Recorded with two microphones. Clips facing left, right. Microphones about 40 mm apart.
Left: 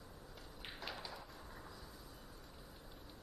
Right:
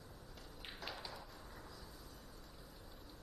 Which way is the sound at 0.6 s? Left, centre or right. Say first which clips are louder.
Left 1 dB; centre.